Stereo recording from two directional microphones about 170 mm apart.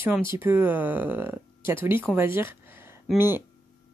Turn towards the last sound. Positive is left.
turn(degrees=-15)  # may be behind; listen again after turning